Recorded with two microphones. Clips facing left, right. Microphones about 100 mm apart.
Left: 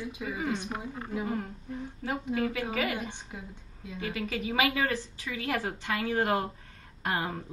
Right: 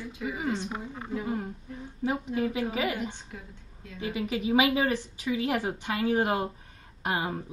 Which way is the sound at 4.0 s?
20° right (ahead or behind).